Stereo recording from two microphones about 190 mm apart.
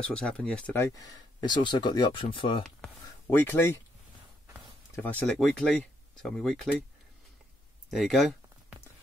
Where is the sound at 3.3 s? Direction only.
10° left (ahead or behind).